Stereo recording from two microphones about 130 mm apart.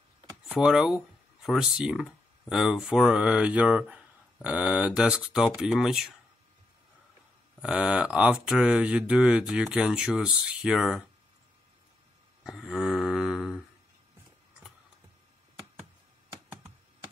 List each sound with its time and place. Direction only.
0.5 s speech: 5° right (ahead or behind)
7.6 s speech: 10° right (ahead or behind)
12.4 s a sound: centre (ahead or behind)